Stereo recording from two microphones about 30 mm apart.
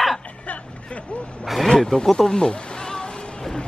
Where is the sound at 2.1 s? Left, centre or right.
Left.